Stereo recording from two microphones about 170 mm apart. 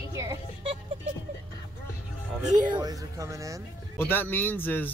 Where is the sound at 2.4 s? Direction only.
45° right (ahead or behind).